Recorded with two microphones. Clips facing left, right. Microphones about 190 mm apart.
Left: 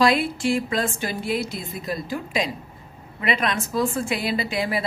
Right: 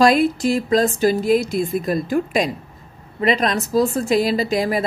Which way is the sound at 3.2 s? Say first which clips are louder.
Right 6 dB; 35° right (ahead or behind).